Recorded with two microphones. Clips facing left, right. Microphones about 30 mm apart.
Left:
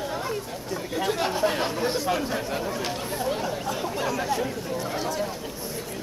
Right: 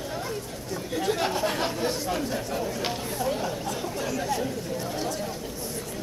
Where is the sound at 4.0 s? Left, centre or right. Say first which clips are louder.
Left 2 dB; centre.